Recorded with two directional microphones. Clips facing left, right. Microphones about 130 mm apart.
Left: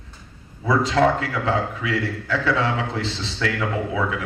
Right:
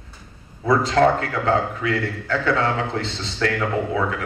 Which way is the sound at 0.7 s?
45° right (ahead or behind).